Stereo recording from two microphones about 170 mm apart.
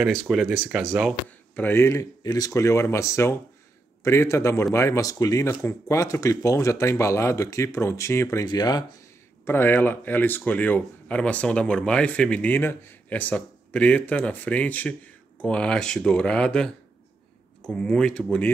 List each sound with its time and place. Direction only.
0.1 s speech: centre (ahead or behind)
1.5 s speech: 15° left (ahead or behind)
9.4 s speech: 10° left (ahead or behind)